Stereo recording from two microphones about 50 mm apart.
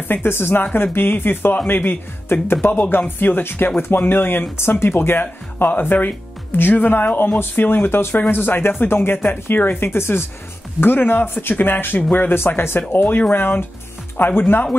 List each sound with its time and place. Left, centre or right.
0.1 s speech: left
10.8 s speech: left